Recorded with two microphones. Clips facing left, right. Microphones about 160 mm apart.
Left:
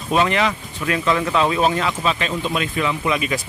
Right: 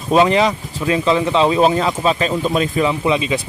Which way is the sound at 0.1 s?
30° right (ahead or behind).